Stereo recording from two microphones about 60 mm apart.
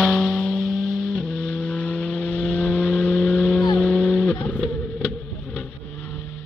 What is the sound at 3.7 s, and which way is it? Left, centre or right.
Dog, centre.